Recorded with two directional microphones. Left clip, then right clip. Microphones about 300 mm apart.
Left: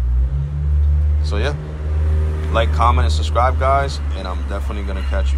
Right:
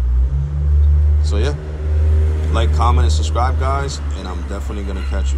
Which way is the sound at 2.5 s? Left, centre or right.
Centre.